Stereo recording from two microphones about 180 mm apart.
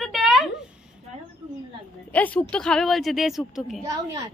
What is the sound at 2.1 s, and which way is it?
A woman's voice, 10° left (ahead or behind).